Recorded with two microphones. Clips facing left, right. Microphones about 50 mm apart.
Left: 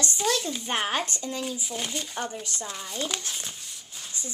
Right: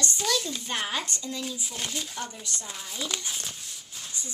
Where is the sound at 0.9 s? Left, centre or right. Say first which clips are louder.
Left 3 dB; left.